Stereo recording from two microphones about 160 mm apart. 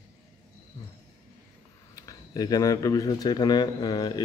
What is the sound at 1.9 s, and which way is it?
Speech, 25° left (ahead or behind).